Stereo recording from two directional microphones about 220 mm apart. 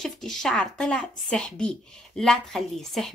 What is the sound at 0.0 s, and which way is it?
A woman's voice, centre (ahead or behind).